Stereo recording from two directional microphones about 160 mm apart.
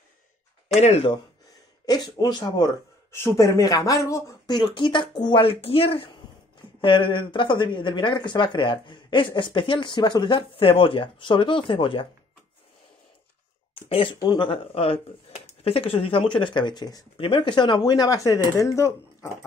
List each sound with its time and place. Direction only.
0.7 s speech: 40° left (ahead or behind)
1.9 s speech: 25° left (ahead or behind)
13.7 s speech: 35° left (ahead or behind); by 19.3 s 20° left (ahead or behind)